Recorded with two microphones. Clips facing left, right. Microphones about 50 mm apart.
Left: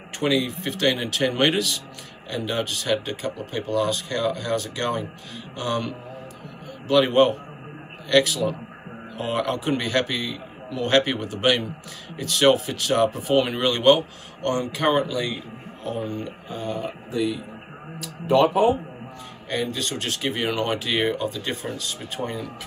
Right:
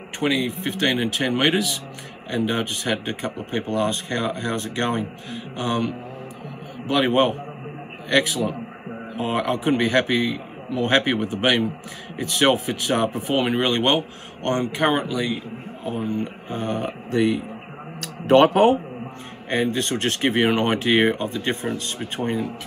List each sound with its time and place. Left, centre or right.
0.2 s speech: centre
2.3 s speech: right
5.3 s speech: centre; by 14.7 s right
14.8 s speech: centre
15.0 s speech: centre
16.5 s speech: right
17.9 s speech: right
19.5 s speech: right